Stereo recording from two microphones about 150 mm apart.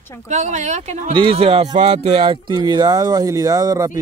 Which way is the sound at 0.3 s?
50° right (ahead or behind).